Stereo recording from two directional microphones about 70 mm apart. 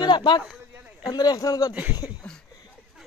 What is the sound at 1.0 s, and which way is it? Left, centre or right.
Speech, left.